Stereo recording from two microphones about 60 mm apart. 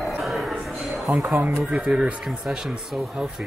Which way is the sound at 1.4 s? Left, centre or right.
Right.